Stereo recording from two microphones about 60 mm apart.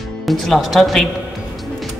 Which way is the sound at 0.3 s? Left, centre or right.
Centre.